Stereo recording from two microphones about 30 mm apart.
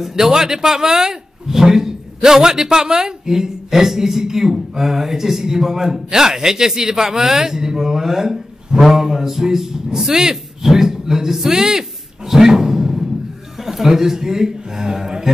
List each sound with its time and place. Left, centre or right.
0.1 s a man's voice: centre